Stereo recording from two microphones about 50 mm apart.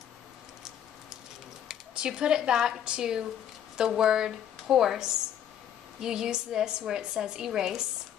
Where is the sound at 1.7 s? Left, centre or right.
Centre.